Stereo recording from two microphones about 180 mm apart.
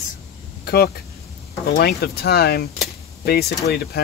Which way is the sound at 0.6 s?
60° left (ahead or behind).